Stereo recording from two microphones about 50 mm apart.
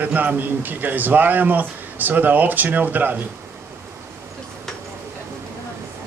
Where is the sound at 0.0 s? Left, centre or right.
Right.